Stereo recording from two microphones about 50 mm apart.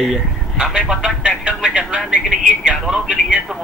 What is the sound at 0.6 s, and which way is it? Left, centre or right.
Speech, centre.